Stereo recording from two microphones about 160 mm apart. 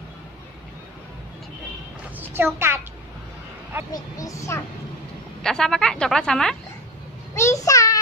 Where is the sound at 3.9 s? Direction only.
20° left (ahead or behind).